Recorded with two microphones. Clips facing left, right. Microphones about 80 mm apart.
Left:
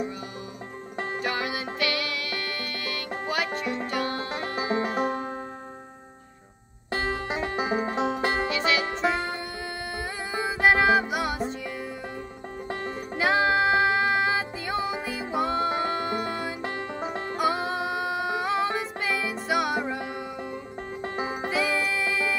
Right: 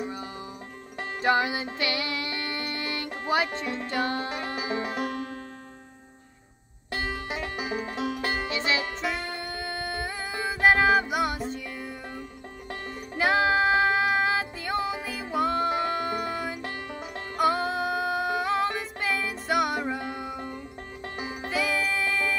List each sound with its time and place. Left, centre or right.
1.2 s music: right
4.6 s music: left
6.9 s music: left
8.5 s music: right
9.3 s music: centre
12.6 s music: left
13.2 s music: centre
16.6 s music: left
17.4 s music: centre
21.0 s music: left
21.5 s music: centre